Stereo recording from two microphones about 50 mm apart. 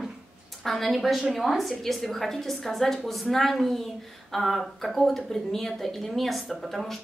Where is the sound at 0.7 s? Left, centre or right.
Centre.